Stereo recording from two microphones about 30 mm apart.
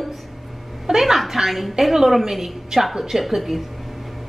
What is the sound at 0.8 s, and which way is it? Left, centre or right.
A woman's voice, centre.